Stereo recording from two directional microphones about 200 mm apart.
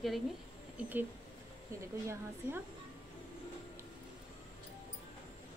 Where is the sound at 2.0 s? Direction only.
15° right (ahead or behind).